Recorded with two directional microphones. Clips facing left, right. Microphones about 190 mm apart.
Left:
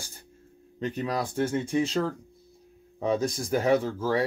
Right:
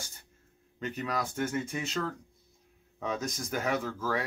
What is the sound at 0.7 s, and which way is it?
Speech, 30° left (ahead or behind).